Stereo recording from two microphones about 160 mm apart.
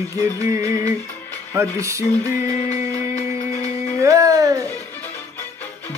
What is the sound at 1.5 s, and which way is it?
Music, 20° right (ahead or behind).